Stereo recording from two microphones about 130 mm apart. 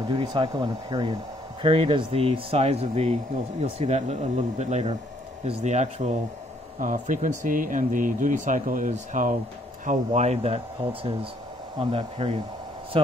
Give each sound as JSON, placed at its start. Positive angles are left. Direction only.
{"t": 0.1, "sound": "speech", "side_deg": -35}
{"t": 6.8, "sound": "speech", "side_deg": -90}
{"t": 9.8, "sound": "speech", "side_deg": -60}